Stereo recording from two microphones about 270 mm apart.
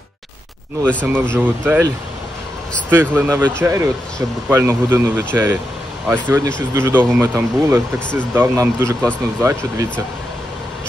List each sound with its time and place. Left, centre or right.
1.3 s speech: centre
2.9 s speech: centre